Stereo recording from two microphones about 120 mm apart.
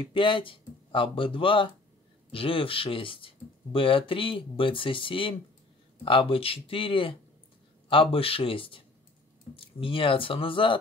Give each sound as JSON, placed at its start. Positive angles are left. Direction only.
{"t": 0.0, "sound": "speech", "side_deg": 45}